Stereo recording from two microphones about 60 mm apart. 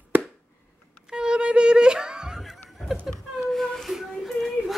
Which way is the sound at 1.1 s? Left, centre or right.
Centre.